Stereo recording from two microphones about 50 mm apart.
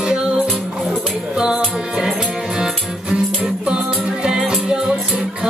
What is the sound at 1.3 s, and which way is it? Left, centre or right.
Music, centre.